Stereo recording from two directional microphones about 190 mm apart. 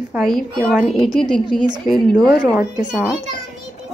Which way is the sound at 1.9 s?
45° left (ahead or behind).